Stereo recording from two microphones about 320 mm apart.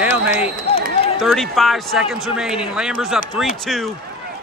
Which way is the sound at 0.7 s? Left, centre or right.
Left.